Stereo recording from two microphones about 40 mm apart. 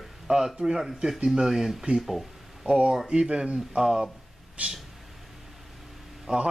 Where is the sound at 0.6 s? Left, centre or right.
Centre.